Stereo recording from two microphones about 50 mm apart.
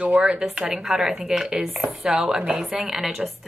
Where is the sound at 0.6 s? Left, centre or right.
Centre.